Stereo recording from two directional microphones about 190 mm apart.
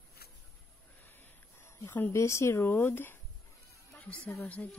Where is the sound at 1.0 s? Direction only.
10° left (ahead or behind).